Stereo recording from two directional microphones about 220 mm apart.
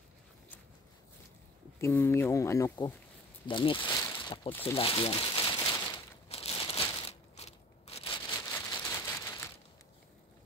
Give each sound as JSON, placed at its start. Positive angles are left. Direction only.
{"t": 1.8, "sound": "speech", "side_deg": 10}
{"t": 4.2, "sound": "a sound", "side_deg": 20}
{"t": 4.5, "sound": "speech", "side_deg": 10}
{"t": 4.7, "sound": "crumpling", "side_deg": 25}
{"t": 6.2, "sound": "crushing", "side_deg": 25}
{"t": 8.3, "sound": "a sound", "side_deg": 10}